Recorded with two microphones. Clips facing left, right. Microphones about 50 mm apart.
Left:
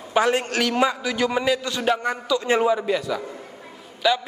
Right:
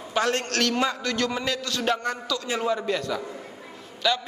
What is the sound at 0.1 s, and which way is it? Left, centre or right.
A man's voice, centre.